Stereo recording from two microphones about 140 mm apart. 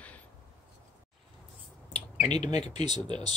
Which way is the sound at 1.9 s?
55° left (ahead or behind).